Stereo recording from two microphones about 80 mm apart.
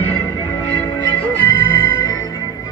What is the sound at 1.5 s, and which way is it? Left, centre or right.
Music, left.